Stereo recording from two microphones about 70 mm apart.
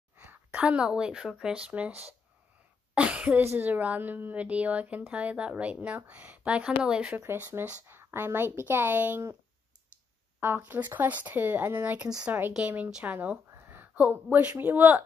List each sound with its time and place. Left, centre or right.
0.1 s a sound: right
0.6 s speech: centre
7.8 s speech: right
10.4 s speech: right
13.5 s a sound: right
14.6 s speech: right